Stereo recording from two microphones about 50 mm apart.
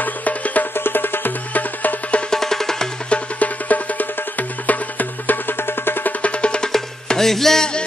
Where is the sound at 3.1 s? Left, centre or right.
Left.